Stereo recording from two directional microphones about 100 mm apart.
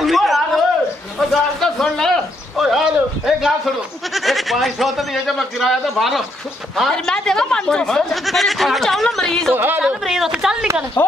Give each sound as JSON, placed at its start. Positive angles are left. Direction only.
{"t": 0.0, "sound": "a sound", "side_deg": 0}
{"t": 4.1, "sound": "speech", "side_deg": 0}
{"t": 9.6, "sound": "speech", "side_deg": -15}
{"t": 10.0, "sound": "speech", "side_deg": -5}
{"t": 11.0, "sound": "speech", "side_deg": 20}